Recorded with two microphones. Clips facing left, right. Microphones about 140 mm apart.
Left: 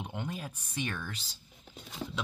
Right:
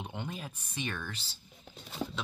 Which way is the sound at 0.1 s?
5° left (ahead or behind).